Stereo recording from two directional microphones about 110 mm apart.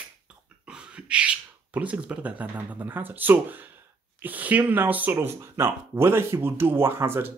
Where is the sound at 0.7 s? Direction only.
10° right (ahead or behind).